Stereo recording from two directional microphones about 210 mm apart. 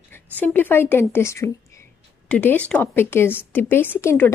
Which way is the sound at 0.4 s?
10° left (ahead or behind).